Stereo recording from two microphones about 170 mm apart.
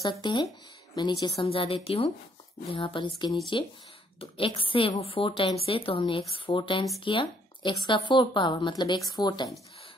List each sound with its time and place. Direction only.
0.0 s a woman's voice: 25° left (ahead or behind)